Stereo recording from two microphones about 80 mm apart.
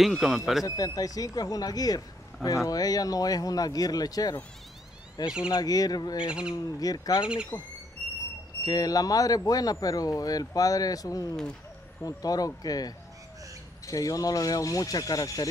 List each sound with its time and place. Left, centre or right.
0.0 s a man's voice: centre
0.7 s speech: left
6.2 s speech: centre
6.5 s speech: left
8.6 s speech: left